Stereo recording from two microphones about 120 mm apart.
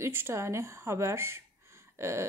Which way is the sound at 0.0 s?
20° right (ahead or behind).